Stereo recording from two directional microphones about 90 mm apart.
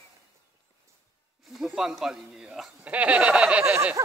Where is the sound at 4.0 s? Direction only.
35° right (ahead or behind).